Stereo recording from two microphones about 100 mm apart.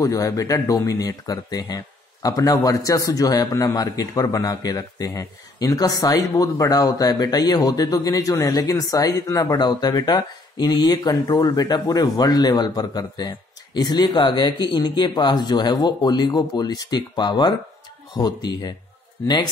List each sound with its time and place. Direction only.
0.0 s a man's voice: 35° left (ahead or behind)